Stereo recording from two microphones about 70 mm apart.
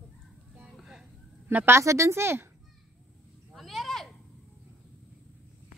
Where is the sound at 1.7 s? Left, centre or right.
Right.